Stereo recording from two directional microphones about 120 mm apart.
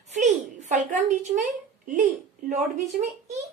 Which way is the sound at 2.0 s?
75° right (ahead or behind).